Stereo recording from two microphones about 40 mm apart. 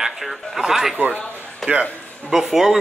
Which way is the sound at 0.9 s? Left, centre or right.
Right.